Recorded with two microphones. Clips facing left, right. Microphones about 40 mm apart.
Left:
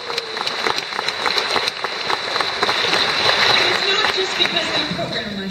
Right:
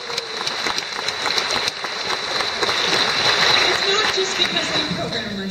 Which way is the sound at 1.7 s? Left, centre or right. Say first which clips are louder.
Left 2 dB; centre.